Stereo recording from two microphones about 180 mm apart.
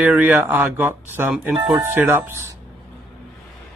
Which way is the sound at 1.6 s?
20° right (ahead or behind).